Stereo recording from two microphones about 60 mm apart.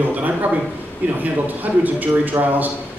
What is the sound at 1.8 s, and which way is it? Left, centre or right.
Speech, right.